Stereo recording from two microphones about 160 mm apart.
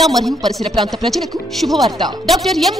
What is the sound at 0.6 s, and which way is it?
Speech, 30° right (ahead or behind).